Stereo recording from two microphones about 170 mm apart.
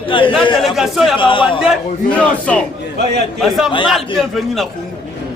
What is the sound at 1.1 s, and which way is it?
Speech, 30° left (ahead or behind).